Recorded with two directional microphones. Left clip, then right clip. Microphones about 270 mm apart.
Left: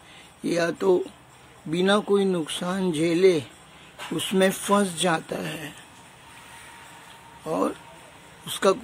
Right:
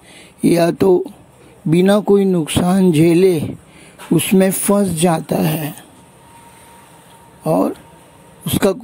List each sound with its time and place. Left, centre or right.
0.4 s speech: right
7.4 s speech: right